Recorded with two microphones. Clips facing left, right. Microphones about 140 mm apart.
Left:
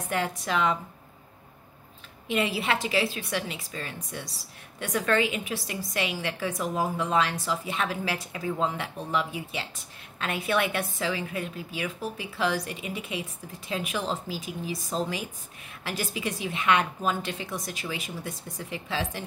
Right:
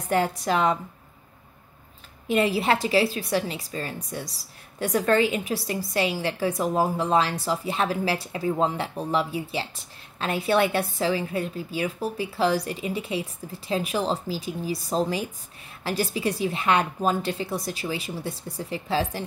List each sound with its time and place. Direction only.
0.1 s a woman's voice: 40° right (ahead or behind)
2.2 s a woman's voice: 40° right (ahead or behind)